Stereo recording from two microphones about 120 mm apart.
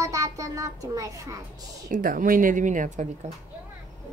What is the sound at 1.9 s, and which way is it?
Speech, 90° right.